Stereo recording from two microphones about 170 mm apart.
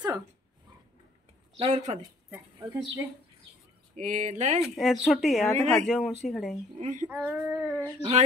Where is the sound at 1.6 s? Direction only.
45° right (ahead or behind).